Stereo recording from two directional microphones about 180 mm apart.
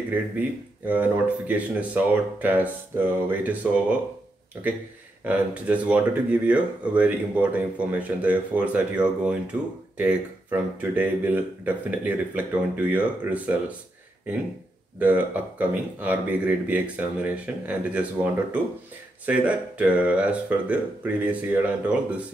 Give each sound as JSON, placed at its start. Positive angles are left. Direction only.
{"t": 0.1, "sound": "speech", "side_deg": -10}
{"t": 5.2, "sound": "speech", "side_deg": -10}
{"t": 15.0, "sound": "speech", "side_deg": -10}